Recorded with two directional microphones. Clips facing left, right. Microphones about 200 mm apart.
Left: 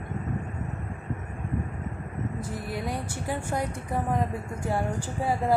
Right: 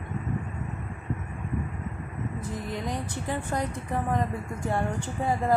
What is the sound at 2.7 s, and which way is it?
A woman's voice, 10° left (ahead or behind).